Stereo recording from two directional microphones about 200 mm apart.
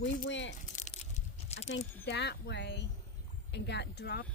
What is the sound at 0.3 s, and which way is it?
Speech, 65° left (ahead or behind).